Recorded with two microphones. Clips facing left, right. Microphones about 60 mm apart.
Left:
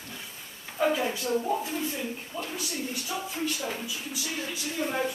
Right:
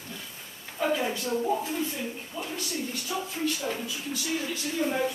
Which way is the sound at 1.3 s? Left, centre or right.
Centre.